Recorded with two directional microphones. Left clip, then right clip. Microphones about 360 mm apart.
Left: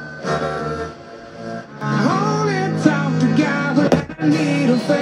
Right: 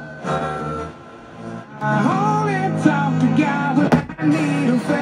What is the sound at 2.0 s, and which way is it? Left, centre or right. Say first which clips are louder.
Music: left 3 dB; centre.